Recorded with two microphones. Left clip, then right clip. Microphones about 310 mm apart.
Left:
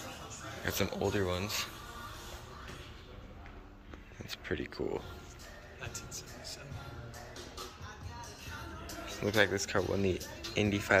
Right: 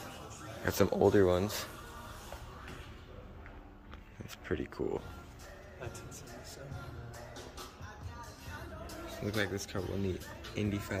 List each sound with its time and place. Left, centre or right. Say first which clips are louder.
0.7 s speech: right 6 dB; centre
4.3 s speech: even; centre
5.8 s music: left 3 dB; right
9.2 s speech: left 7 dB; centre